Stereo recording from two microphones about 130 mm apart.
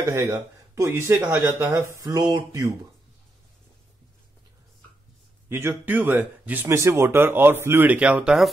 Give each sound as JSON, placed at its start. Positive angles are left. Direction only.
{"t": 0.0, "sound": "speech", "side_deg": -25}
{"t": 5.5, "sound": "speech", "side_deg": -15}